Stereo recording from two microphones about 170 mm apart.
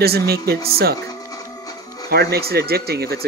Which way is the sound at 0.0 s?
65° right (ahead or behind).